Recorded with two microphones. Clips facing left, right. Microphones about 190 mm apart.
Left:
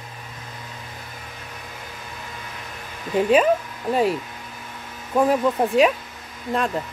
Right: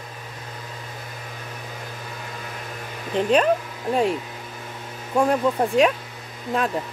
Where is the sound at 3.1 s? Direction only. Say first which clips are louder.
Left 2 dB; 5° left (ahead or behind).